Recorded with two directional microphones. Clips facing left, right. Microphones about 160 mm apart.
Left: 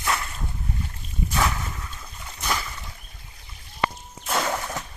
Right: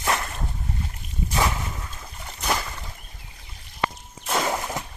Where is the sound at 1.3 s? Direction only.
20° right (ahead or behind).